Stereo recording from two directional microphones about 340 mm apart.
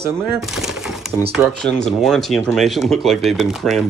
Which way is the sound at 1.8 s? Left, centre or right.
Centre.